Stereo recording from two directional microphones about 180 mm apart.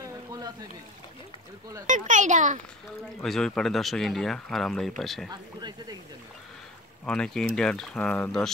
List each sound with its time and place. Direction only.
1.9 s a child's voice: 45° right (ahead or behind)
3.2 s speech: centre (ahead or behind)
5.3 s speech: 20° right (ahead or behind)
7.1 s speech: 5° left (ahead or behind)